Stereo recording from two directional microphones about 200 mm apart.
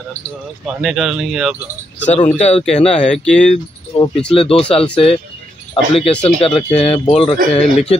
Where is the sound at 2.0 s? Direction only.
35° left (ahead or behind).